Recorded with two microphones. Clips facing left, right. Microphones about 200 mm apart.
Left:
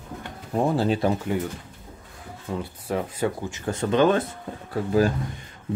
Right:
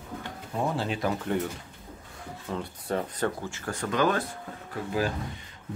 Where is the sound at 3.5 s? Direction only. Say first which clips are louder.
Left 7 dB; 20° left (ahead or behind).